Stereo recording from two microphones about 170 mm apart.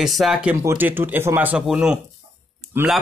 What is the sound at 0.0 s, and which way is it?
A man's voice, centre (ahead or behind).